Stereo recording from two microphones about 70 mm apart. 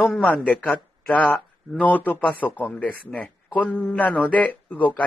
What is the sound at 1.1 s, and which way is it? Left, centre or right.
A man's voice, left.